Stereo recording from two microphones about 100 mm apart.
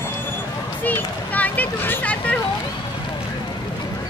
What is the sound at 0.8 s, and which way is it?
Hubbub, 15° left (ahead or behind).